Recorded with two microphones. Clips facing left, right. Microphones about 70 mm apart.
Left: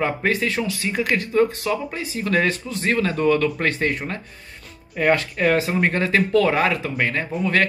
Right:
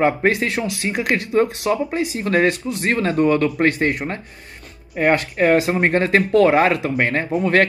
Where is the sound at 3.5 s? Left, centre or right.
Centre.